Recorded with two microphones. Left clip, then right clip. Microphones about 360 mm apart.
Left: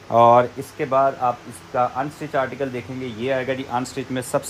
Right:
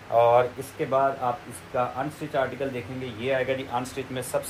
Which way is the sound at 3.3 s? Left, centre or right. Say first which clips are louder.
Left 3 dB; left.